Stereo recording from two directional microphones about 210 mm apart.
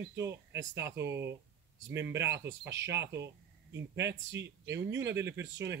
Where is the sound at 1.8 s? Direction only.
55° right (ahead or behind).